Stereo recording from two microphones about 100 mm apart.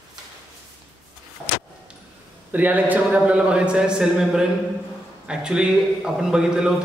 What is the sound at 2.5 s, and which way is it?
A man's voice, 15° right (ahead or behind).